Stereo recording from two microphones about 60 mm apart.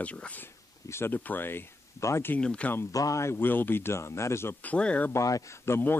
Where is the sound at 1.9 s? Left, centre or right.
Left.